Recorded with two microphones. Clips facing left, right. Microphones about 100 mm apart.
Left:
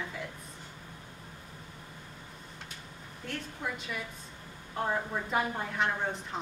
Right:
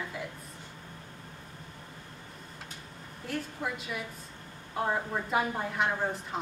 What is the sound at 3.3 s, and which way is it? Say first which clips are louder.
A woman's voice: right 3 dB; 5° right (ahead or behind).